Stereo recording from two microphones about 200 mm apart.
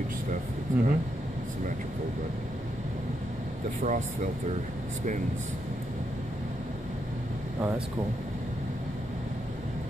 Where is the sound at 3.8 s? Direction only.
40° right (ahead or behind).